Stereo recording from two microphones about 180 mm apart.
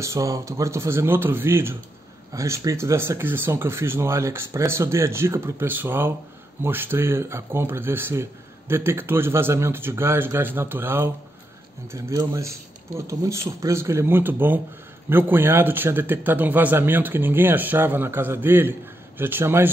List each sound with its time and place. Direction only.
0.0 s a man's voice: 15° right (ahead or behind)